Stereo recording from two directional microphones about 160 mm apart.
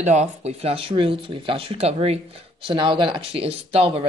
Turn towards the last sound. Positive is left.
turn(degrees=-40)  # may be behind; listen again after turning